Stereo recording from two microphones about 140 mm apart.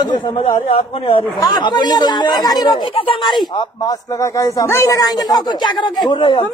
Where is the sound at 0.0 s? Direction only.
35° left (ahead or behind).